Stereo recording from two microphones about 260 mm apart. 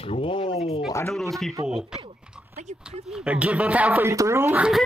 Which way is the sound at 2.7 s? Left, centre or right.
Right.